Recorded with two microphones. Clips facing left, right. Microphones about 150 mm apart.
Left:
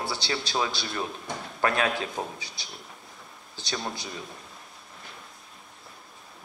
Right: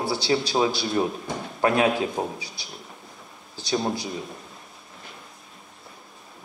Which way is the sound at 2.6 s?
5° right (ahead or behind).